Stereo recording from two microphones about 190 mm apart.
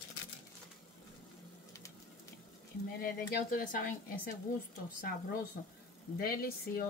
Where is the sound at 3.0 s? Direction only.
50° left (ahead or behind).